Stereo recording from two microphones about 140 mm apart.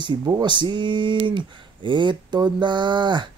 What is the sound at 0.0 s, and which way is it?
Speech, 35° right (ahead or behind).